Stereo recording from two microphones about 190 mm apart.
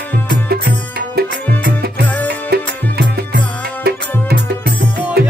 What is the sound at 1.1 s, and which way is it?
Music, 55° right (ahead or behind).